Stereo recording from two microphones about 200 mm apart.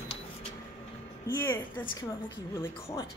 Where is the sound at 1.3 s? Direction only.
10° left (ahead or behind).